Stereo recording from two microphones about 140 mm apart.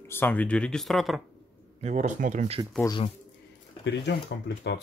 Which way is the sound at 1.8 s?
55° right (ahead or behind).